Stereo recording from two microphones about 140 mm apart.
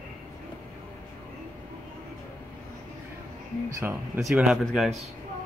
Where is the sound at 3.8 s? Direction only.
10° right (ahead or behind).